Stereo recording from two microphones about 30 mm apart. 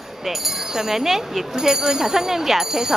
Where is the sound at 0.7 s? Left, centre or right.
Centre.